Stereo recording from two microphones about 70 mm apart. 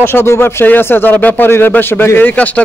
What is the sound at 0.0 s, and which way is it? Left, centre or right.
A man's voice, left.